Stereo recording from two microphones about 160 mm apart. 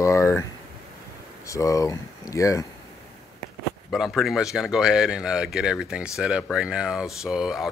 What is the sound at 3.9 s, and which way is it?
Speech, centre (ahead or behind).